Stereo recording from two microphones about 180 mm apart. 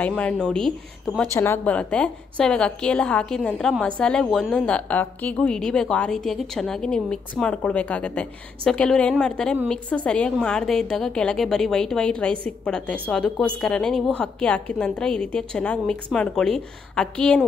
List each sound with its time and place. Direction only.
0.0 s a woman's voice: 5° left (ahead or behind)
1.3 s a woman's voice: 15° left (ahead or behind)